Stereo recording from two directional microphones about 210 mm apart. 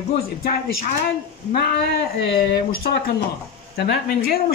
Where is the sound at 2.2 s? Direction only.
50° left (ahead or behind).